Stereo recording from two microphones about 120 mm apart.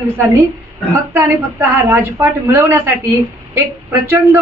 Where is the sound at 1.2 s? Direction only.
20° right (ahead or behind).